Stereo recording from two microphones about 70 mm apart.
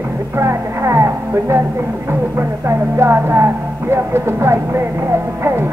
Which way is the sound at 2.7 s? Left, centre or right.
Right.